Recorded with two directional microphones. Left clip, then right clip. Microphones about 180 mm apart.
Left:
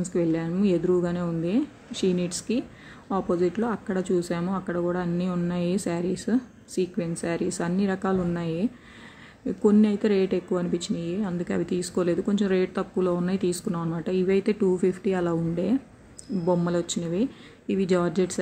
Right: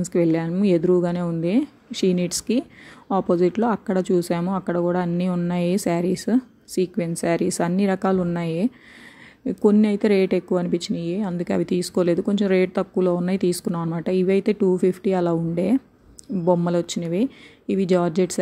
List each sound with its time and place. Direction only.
0.0 s speech: 35° right (ahead or behind)